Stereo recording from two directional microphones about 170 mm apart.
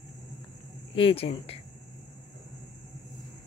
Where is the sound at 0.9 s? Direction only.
35° left (ahead or behind).